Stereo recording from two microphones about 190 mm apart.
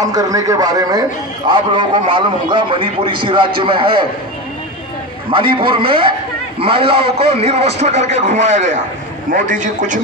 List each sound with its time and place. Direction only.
0.0 s a man's voice: 20° right (ahead or behind)
5.3 s a man's voice: 25° right (ahead or behind)